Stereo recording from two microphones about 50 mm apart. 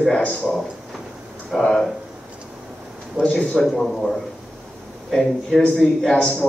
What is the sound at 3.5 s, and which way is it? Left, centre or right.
A man's voice, centre.